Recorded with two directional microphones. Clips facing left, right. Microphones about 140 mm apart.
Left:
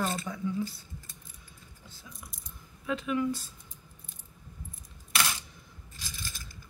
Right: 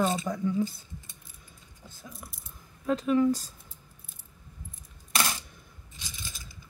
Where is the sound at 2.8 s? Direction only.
40° right (ahead or behind).